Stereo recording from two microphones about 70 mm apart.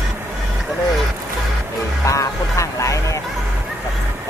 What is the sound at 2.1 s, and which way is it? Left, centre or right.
Speech, left.